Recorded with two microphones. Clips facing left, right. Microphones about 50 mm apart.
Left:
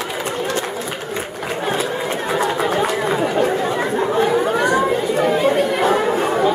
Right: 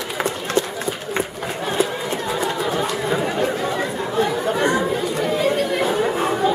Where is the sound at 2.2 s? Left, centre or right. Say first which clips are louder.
Left 5 dB; left.